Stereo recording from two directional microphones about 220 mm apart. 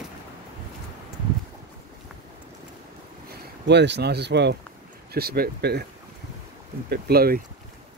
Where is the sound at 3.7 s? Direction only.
50° right (ahead or behind).